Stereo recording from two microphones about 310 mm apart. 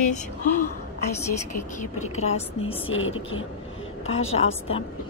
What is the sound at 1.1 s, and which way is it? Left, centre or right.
Speech, centre.